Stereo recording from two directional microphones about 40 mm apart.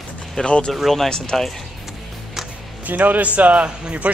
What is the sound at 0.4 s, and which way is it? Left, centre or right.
Speech, left.